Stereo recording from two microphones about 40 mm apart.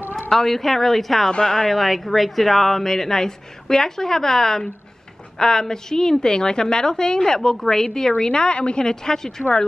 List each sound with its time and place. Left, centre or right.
0.3 s speech: centre
1.7 s a woman's voice: centre